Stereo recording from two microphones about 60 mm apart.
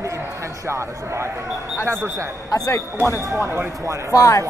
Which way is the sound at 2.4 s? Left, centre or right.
Left.